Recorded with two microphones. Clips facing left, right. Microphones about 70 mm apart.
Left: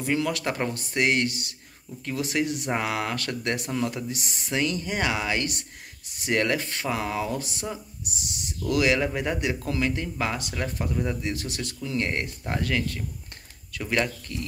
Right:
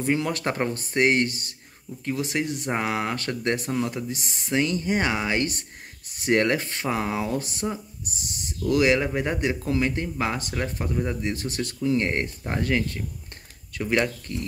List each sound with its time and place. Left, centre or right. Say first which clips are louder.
0.0 s speech: right 1 dB; right
0.3 s speech: right 2 dB; right
2.0 s speech: even; right
8.6 s speech: right 2 dB; right
11.3 s speech: right 3 dB; right; by 14.3 s centre